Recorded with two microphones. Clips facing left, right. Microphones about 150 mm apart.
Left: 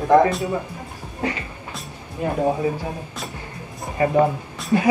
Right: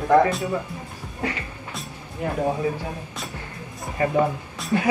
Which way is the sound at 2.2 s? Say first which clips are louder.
Left 3 dB; 20° left (ahead or behind).